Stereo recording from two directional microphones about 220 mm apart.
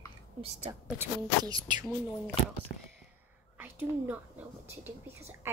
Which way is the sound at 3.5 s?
10° right (ahead or behind).